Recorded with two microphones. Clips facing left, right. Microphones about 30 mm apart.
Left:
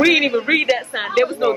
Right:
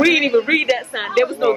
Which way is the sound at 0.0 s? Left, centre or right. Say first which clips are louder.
Even; centre.